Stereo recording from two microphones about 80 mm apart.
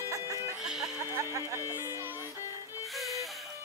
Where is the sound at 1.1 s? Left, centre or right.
Right.